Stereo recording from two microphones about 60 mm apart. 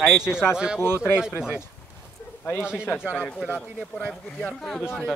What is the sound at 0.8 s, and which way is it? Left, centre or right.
Speech, left.